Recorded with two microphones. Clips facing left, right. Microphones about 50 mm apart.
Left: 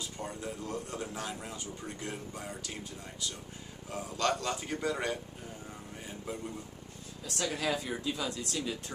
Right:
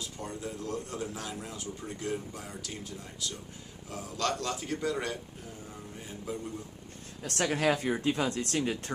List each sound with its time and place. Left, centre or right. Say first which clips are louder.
0.0 s a man's voice: right 1 dB; centre
7.2 s speech: right 5 dB; right